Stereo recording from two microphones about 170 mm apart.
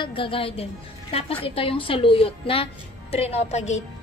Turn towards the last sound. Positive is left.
turn(degrees=40)  # may be behind; listen again after turning